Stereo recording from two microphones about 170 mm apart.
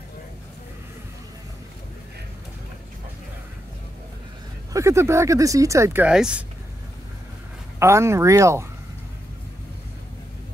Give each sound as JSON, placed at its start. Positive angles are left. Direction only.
{"t": 4.7, "sound": "speech", "side_deg": -15}
{"t": 6.0, "sound": "speech", "side_deg": -5}
{"t": 7.8, "sound": "speech", "side_deg": -15}